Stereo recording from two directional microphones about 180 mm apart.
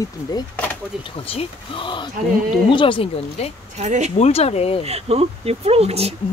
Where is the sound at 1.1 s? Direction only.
30° left (ahead or behind).